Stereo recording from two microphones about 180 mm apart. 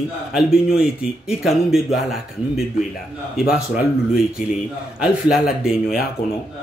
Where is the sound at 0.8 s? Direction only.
5° right (ahead or behind).